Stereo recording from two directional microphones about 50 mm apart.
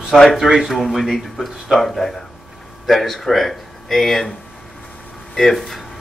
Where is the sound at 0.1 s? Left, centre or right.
Centre.